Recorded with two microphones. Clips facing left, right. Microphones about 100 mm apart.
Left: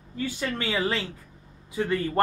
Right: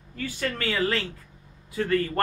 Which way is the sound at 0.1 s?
15° left (ahead or behind).